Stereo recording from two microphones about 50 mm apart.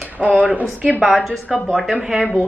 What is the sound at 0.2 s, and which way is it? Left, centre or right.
Speech, right.